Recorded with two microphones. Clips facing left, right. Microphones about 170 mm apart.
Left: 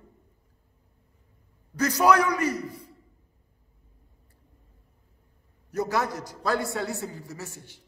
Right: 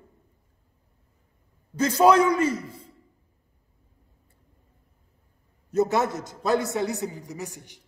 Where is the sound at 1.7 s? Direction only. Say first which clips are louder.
Right 3 dB; 25° right (ahead or behind).